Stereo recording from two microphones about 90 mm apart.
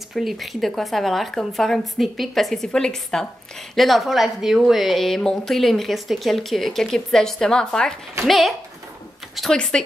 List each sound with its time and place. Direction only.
0.1 s a woman's voice: centre (ahead or behind)